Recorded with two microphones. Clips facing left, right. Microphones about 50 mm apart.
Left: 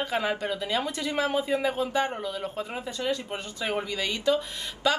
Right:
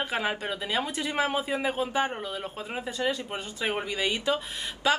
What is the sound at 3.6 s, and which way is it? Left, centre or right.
Speech, right.